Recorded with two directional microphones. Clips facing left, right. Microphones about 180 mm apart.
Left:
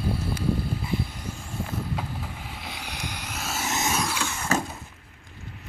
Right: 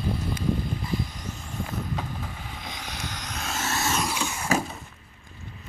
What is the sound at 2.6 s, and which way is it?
Vehicle, 10° left (ahead or behind).